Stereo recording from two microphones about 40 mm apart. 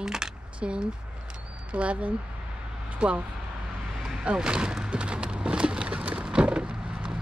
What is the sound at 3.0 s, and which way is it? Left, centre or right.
Speech, right.